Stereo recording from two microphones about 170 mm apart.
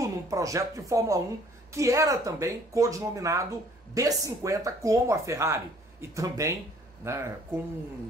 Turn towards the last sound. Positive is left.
turn(degrees=-15)  # may be behind; listen again after turning